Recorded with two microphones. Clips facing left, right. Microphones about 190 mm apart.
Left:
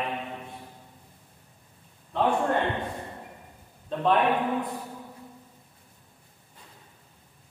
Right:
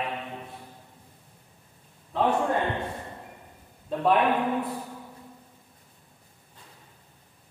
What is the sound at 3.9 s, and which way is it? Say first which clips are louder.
Speech: right 1 dB; 5° right (ahead or behind).